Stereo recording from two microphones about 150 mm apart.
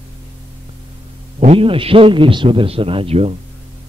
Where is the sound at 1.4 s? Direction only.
40° right (ahead or behind).